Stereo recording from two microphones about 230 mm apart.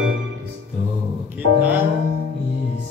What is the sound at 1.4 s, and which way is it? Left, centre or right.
Music, right.